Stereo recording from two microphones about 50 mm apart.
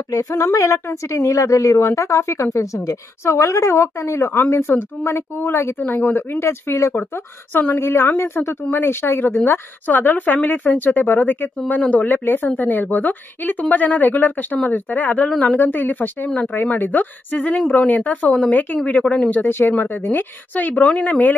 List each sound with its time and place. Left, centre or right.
0.3 s a woman's voice: left
2.5 s a woman's voice: left
4.7 s a woman's voice: left
5.8 s a woman's voice: left
6.7 s a woman's voice: left
7.7 s a woman's voice: left
11.8 s a woman's voice: left
12.1 s a woman's voice: left
15.6 s a woman's voice: left
19.0 s speech: centre
19.9 s a woman's voice: left